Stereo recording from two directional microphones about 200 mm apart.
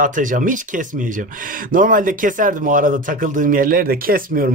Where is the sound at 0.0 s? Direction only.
40° right (ahead or behind).